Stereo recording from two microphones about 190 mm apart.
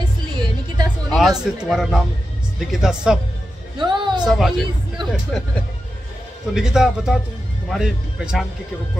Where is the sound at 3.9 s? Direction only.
25° right (ahead or behind).